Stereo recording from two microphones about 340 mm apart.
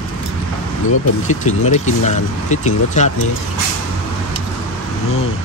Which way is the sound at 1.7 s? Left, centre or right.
Centre.